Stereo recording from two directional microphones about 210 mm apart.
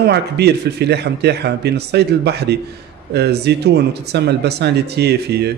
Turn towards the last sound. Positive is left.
turn(degrees=-50)  # may be behind; listen again after turning